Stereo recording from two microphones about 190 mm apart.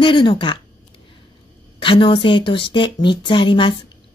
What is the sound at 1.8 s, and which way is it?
Speech, 25° left (ahead or behind).